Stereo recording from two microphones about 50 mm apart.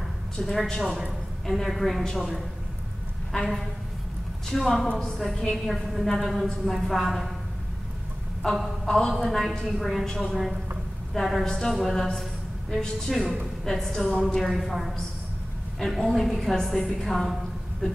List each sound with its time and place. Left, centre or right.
0.4 s a woman's voice: centre
4.5 s a woman's voice: centre
8.4 s a woman's voice: centre